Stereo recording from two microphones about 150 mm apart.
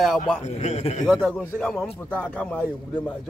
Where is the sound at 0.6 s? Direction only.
45° left (ahead or behind).